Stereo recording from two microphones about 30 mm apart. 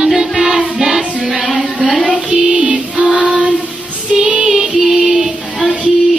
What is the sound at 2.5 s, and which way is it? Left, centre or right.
Music, right.